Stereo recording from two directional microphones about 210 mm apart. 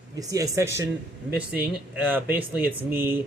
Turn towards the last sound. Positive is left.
turn(degrees=-10)  # may be behind; listen again after turning